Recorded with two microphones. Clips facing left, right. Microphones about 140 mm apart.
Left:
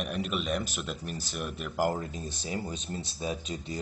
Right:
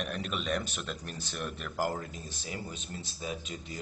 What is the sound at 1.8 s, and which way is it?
Speech, 30° left (ahead or behind).